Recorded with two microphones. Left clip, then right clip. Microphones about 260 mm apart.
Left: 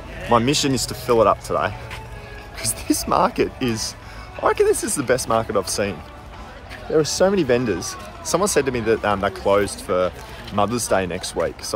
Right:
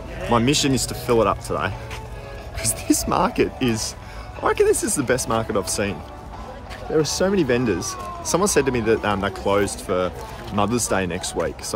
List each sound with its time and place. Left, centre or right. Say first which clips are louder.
0.3 s speech: left 1 dB; centre